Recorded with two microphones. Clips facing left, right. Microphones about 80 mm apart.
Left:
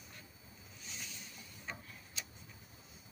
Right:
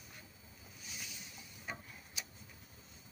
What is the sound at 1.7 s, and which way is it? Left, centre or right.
Tick-tock, centre.